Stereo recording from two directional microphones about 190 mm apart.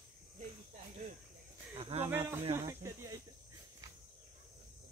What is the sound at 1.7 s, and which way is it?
Speech, 30° right (ahead or behind).